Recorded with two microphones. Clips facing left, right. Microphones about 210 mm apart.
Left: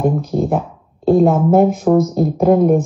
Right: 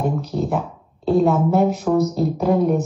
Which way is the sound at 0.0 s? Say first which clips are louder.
Left 5 dB; 50° left (ahead or behind).